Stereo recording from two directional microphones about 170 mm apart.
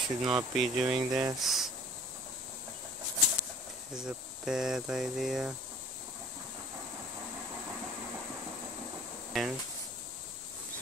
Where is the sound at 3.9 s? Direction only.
5° right (ahead or behind).